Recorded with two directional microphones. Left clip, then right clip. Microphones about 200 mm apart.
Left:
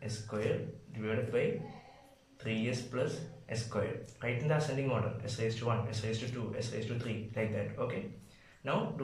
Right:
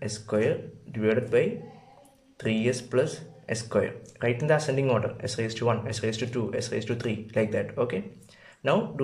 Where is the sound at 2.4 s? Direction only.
55° right (ahead or behind).